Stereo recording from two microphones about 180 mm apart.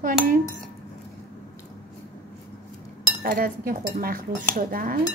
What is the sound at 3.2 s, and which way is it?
Speech, 50° right (ahead or behind).